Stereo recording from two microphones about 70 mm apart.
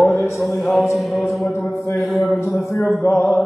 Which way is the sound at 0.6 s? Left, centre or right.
Centre.